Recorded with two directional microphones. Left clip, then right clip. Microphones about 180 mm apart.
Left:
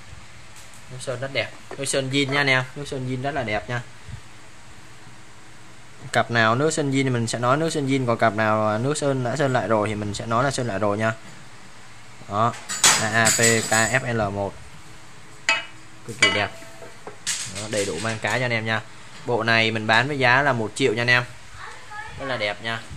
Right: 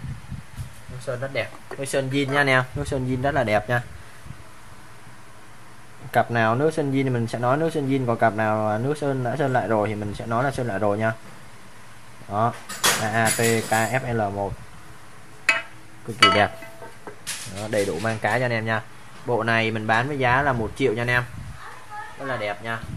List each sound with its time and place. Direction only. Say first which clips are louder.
1.0 s speech: left 1 dB; 10° left (ahead or behind)
2.8 s speech: right 4 dB; 20° right (ahead or behind)
6.1 s speech: left 1 dB; 10° left (ahead or behind)
12.3 s speech: left 1 dB; 10° left (ahead or behind)
17.6 s speech: right 4 dB; 5° right (ahead or behind); by 22.8 s 15° left (ahead or behind)